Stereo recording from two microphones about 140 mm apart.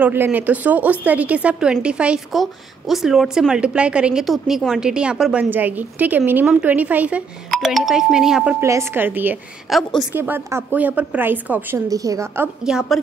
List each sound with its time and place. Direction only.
0.0 s a woman's voice: 15° right (ahead or behind)
8.5 s a woman's voice: 20° right (ahead or behind)
9.7 s a woman's voice: centre (ahead or behind)
10.1 s a woman's voice: 15° right (ahead or behind)
11.9 s a woman's voice: 25° right (ahead or behind)
12.6 s a woman's voice: centre (ahead or behind)